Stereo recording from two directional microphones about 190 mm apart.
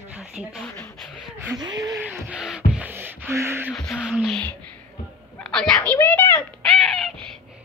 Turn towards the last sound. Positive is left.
turn(degrees=0)  # may be behind; listen again after turning